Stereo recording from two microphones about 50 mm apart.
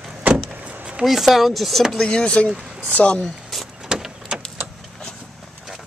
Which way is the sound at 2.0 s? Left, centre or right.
Centre.